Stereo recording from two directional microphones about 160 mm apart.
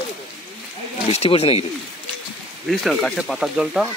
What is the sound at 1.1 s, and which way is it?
Speech, 40° left (ahead or behind).